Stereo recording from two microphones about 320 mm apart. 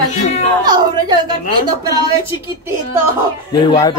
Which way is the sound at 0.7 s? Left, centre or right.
Centre.